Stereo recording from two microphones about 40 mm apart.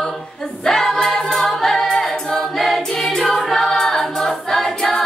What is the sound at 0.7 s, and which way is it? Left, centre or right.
Choir, centre.